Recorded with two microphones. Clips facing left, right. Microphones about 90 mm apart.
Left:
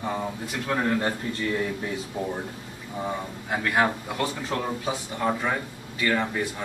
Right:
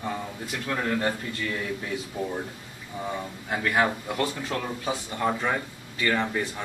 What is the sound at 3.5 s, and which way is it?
Speech, 5° left (ahead or behind).